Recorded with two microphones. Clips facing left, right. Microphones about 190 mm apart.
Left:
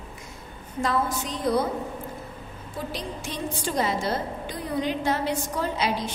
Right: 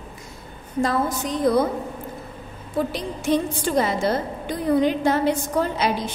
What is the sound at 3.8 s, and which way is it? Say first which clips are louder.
A woman's voice: right 3 dB; 55° right (ahead or behind).